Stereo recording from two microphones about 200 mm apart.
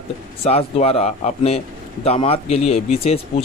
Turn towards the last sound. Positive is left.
turn(degrees=30)  # may be behind; listen again after turning